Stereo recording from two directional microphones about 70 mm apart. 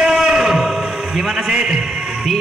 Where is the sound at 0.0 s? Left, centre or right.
Centre.